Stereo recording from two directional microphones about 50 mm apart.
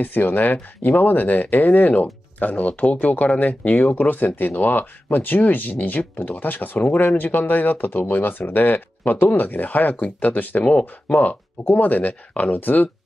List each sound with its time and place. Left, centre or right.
0.0 s speech: left
10.6 s speech: left